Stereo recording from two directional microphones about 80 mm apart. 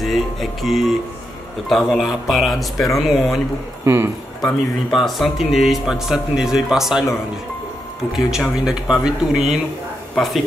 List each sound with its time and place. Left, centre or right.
0.0 s speech: centre
3.8 s a man's voice: right
4.9 s speech: centre
8.1 s speech: centre